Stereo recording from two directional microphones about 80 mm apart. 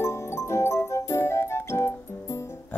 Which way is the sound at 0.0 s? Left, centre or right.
Left.